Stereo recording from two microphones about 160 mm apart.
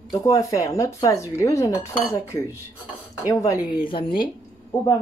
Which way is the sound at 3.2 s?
20° left (ahead or behind).